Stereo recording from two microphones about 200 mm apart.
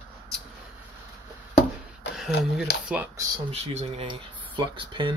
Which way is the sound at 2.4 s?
Centre (ahead or behind).